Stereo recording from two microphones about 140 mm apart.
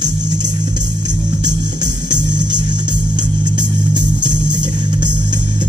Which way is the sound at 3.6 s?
30° right (ahead or behind).